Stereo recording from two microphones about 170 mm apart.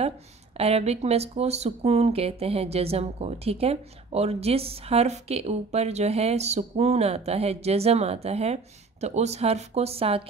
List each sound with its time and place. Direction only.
0.6 s speech: 35° right (ahead or behind)